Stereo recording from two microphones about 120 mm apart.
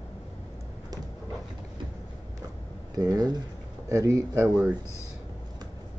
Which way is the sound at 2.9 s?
30° right (ahead or behind).